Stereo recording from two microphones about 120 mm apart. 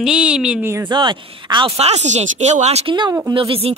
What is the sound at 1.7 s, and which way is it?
Speech, 65° right (ahead or behind).